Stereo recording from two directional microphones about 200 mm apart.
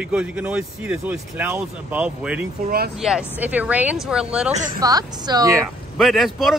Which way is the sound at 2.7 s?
50° right (ahead or behind).